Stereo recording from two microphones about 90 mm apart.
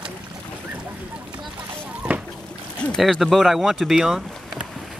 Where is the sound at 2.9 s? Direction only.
Centre (ahead or behind).